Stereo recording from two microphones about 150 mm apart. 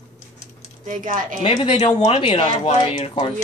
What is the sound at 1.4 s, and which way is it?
Speech, 40° left (ahead or behind).